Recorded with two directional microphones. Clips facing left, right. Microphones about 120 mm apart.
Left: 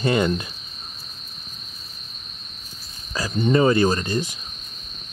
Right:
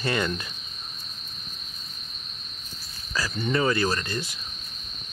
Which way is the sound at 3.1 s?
20° left (ahead or behind).